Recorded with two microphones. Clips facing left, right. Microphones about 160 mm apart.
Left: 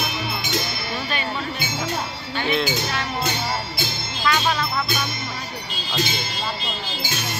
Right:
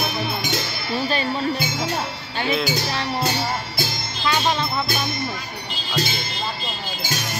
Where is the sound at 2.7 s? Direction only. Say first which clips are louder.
Right 1 dB; 35° right (ahead or behind).